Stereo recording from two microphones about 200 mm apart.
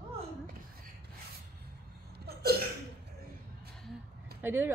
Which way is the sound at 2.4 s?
50° right (ahead or behind).